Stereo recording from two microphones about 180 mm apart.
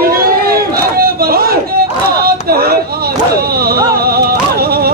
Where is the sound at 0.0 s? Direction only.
55° right (ahead or behind).